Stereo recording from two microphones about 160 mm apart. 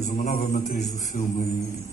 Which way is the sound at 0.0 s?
50° left (ahead or behind).